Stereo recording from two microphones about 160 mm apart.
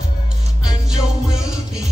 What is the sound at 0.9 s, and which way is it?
Music, 5° right (ahead or behind).